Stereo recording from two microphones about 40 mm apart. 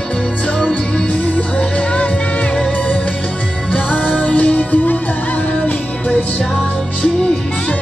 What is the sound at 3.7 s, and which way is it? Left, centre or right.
Music, left.